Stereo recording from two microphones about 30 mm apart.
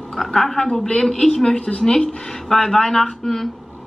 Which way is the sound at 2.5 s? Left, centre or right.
Centre.